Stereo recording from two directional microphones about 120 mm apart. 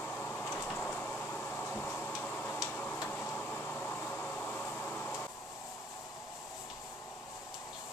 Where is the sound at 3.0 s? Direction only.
20° left (ahead or behind).